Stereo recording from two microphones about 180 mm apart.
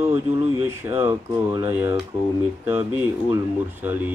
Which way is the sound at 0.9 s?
15° right (ahead or behind).